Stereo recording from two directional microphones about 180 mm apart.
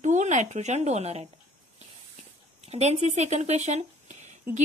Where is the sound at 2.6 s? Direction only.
35° right (ahead or behind).